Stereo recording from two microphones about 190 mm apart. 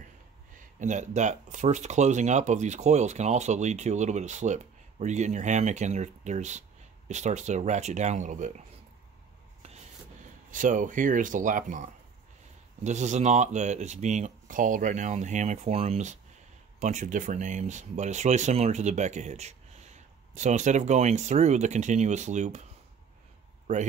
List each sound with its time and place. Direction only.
0.7 s speech: 40° right (ahead or behind)
10.5 s speech: 40° right (ahead or behind)